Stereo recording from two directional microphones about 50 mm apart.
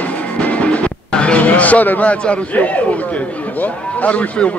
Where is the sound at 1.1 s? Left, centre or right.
Left.